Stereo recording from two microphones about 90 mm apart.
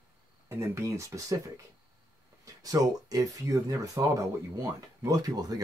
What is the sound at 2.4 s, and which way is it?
Speech, 40° right (ahead or behind).